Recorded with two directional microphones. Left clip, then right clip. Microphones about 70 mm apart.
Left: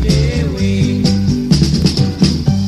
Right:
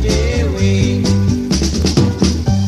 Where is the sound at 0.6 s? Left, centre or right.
Centre.